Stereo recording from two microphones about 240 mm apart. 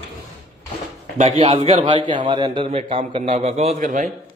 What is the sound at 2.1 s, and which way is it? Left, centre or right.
Speech, right.